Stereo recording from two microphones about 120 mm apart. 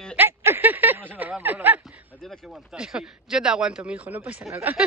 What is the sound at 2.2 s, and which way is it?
A man's voice, 5° left (ahead or behind).